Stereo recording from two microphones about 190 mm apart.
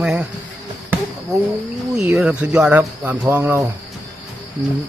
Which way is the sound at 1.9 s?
5° right (ahead or behind).